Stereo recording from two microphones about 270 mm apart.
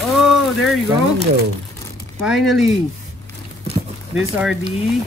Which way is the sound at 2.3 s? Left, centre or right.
Centre.